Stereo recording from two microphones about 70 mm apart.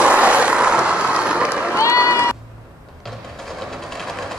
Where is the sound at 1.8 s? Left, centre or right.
Left.